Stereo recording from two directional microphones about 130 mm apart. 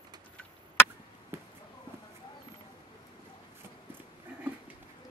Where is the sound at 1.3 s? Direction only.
20° right (ahead or behind).